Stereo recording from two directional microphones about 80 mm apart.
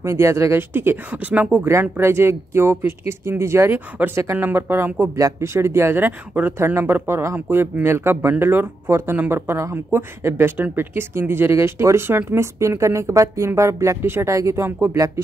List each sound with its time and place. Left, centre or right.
0.0 s speech: right; by 1.7 s centre
1.7 s speech: right
5.1 s speech: right